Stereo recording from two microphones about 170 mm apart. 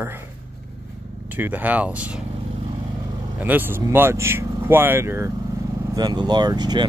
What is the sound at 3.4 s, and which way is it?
Speech, 10° right (ahead or behind).